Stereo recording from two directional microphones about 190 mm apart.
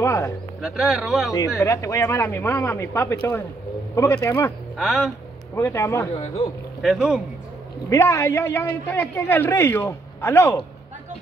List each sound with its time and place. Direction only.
0.0 s music: 15° left (ahead or behind)
0.6 s speech: 5° right (ahead or behind)
1.6 s a man's voice: 15° left (ahead or behind)
4.7 s speech: centre (ahead or behind)
5.5 s a man's voice: 15° left (ahead or behind)
6.1 s speech: 30° left (ahead or behind)
6.8 s speech: centre (ahead or behind)
7.9 s a man's voice: 15° left (ahead or behind)